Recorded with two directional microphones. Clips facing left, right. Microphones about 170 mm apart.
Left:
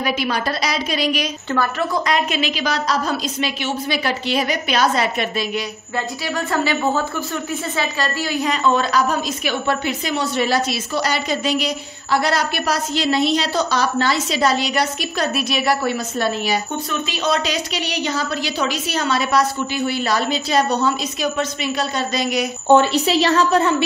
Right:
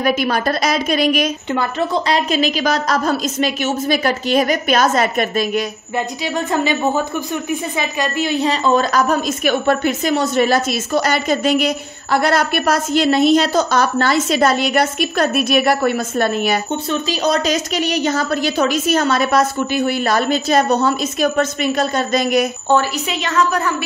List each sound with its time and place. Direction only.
0.0 s a woman's voice: 50° right (ahead or behind)
1.5 s a woman's voice: 20° right (ahead or behind)
2.1 s a woman's voice: 40° right (ahead or behind)
5.9 s a woman's voice: 20° right (ahead or behind); by 16.5 s 55° right (ahead or behind)
16.9 s a woman's voice: 40° right (ahead or behind)
23.0 s a woman's voice: 35° left (ahead or behind)